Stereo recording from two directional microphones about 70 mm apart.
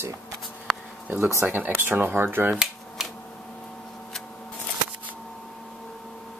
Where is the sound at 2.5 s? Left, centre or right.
Centre.